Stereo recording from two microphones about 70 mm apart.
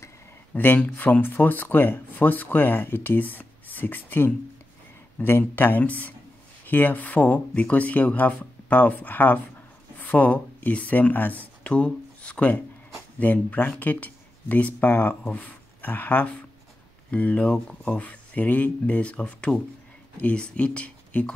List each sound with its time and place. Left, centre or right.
0.6 s speech: left